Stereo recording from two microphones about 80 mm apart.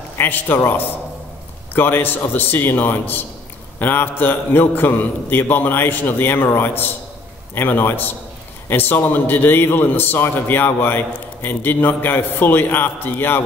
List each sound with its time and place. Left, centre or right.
0.2 s a man's voice: left